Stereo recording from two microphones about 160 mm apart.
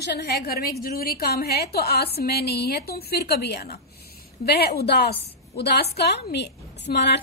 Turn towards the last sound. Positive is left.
turn(degrees=90)